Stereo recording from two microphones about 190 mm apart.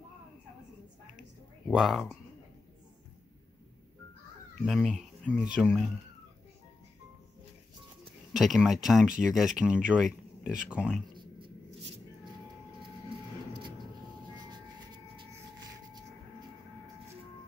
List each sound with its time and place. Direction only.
1.7 s speech: centre (ahead or behind)
4.6 s speech: centre (ahead or behind)
8.3 s speech: centre (ahead or behind)
11.1 s a sound: 25° right (ahead or behind)